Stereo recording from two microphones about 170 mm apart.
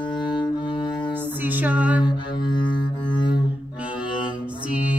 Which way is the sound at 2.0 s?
25° left (ahead or behind).